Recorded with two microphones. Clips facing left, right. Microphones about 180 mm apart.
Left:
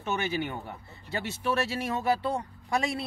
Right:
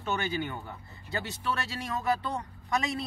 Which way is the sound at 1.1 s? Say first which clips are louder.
Left 4 dB; 25° left (ahead or behind).